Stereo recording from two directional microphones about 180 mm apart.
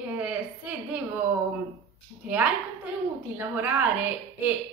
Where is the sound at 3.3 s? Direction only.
10° right (ahead or behind).